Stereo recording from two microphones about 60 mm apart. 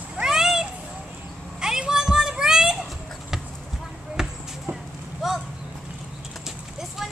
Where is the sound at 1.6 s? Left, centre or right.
Centre.